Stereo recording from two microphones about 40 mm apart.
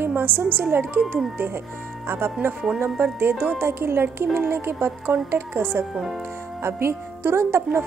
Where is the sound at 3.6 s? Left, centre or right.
Right.